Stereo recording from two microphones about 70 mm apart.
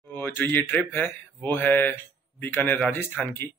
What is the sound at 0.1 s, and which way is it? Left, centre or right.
A man's voice, left.